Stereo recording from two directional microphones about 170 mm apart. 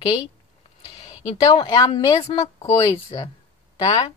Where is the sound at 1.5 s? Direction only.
30° left (ahead or behind).